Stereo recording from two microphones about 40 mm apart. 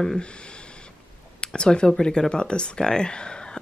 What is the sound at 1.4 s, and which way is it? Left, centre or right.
Speech, left.